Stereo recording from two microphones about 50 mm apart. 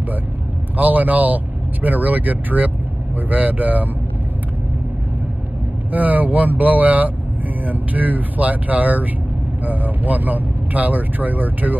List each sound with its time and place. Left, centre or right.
0.7 s speech: right
5.9 s speech: right